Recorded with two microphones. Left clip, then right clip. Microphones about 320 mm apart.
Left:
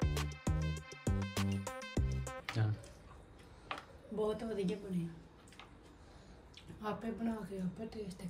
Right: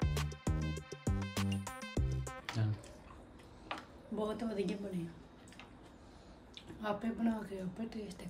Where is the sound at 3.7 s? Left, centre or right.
Centre.